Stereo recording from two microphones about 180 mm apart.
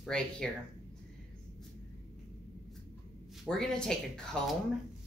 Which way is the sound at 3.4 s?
5° left (ahead or behind).